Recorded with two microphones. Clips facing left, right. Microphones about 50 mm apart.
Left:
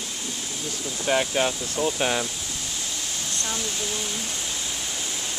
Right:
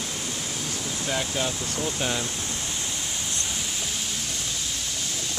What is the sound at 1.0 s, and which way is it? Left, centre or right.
Speech, left.